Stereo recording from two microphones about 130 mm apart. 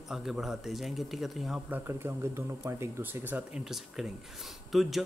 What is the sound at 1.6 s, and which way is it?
Speech, 15° right (ahead or behind).